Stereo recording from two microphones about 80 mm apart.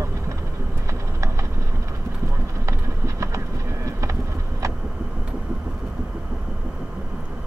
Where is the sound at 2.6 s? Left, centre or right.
Right.